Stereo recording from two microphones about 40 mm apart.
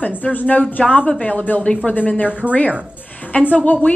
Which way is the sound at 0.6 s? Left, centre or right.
Left.